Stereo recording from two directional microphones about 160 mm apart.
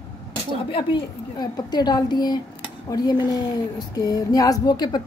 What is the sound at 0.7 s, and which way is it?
A woman's voice, 30° left (ahead or behind).